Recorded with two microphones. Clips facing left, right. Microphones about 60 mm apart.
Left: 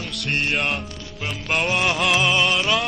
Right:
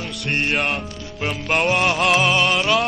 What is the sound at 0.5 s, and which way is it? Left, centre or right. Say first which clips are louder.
Music: right 2 dB; centre.